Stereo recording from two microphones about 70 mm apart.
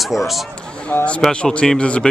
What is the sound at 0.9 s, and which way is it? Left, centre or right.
Speech, left.